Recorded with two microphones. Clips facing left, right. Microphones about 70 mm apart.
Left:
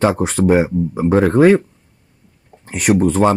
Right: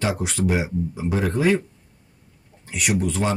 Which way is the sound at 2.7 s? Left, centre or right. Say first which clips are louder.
Left 9 dB; left.